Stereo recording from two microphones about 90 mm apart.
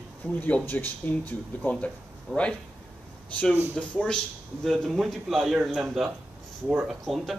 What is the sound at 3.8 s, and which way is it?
A man's voice, 10° left (ahead or behind).